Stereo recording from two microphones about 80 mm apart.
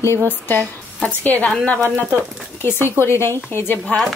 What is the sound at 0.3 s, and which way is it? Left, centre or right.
Speech, left.